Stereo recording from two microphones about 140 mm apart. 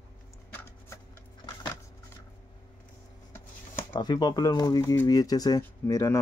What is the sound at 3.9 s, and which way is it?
Speech, 30° left (ahead or behind).